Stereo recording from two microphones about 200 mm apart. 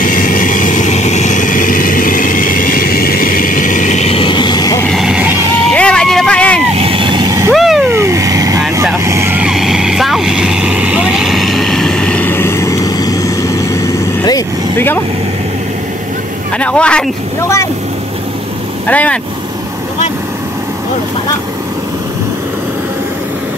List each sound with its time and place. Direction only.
0.0 s vehicle: 45° left (ahead or behind); by 4.8 s 20° left (ahead or behind)
4.8 s vehicle: centre (ahead or behind)
6.8 s vehicle: 25° right (ahead or behind)
7.5 s vehicle: centre (ahead or behind)
7.9 s vehicle: 15° right (ahead or behind); by 15.0 s 15° left (ahead or behind)
16.5 s a man's voice: 5° left (ahead or behind)
18.9 s speech: 5° left (ahead or behind)